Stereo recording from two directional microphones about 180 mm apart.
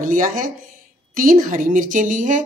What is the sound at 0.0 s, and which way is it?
A woman's voice, 50° right (ahead or behind).